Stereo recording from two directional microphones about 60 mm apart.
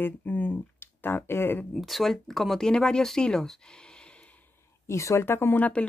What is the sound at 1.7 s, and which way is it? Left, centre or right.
Speech, centre.